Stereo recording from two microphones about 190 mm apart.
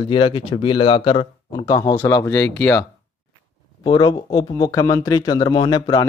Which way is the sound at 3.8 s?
20° left (ahead or behind).